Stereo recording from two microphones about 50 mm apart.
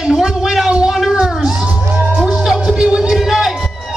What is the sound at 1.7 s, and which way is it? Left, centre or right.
Music, right.